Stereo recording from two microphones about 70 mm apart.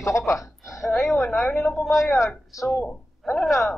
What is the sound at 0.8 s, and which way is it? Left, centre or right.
Speech, centre.